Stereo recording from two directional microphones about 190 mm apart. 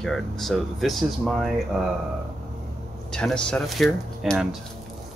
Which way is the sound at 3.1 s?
5° left (ahead or behind).